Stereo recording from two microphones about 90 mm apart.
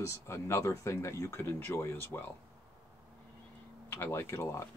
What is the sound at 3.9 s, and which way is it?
Speech, 25° left (ahead or behind).